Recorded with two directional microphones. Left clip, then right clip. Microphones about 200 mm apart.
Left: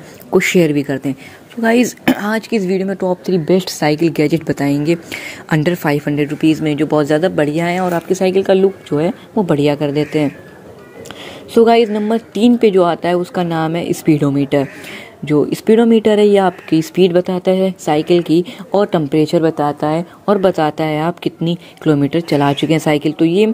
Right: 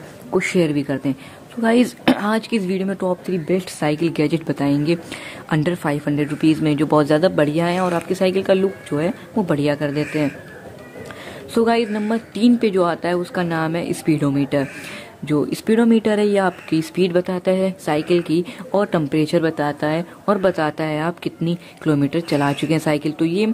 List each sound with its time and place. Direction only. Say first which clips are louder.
0.3 s speech: left 6 dB; 15° left (ahead or behind)
11.5 s speech: left 8 dB; 10° left (ahead or behind)